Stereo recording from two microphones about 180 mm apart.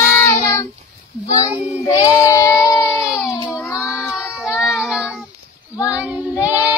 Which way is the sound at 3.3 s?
20° left (ahead or behind).